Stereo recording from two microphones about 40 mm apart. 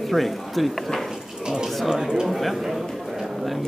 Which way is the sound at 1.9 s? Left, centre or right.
Centre.